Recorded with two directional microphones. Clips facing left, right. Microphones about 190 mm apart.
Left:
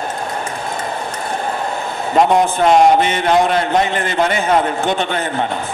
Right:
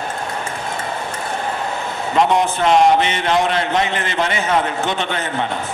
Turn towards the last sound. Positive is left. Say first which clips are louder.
# left 3 dB
turn(degrees=50)  # may be behind; listen again after turning